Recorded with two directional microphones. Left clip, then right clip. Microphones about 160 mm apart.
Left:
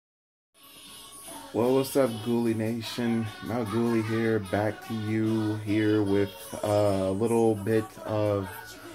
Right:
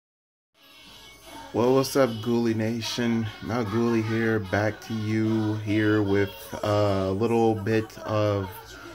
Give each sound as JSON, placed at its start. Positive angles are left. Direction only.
{"t": 1.5, "sound": "speech", "side_deg": -30}